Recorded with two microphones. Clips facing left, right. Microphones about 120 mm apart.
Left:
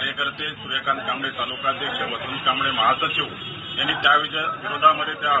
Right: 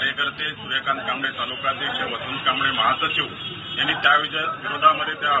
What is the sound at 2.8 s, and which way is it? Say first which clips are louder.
A man's voice: left 1 dB; centre (ahead or behind).